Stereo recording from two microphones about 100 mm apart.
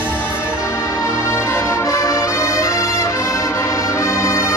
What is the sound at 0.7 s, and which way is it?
Music, 30° left (ahead or behind).